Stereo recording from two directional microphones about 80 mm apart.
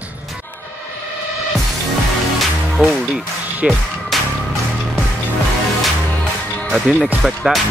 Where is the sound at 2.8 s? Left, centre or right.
Centre.